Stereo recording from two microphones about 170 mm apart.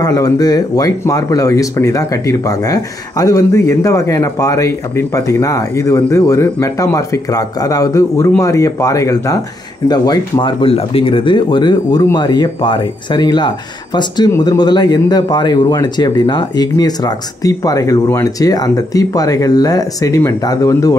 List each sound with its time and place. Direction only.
0.0 s speech: 20° left (ahead or behind)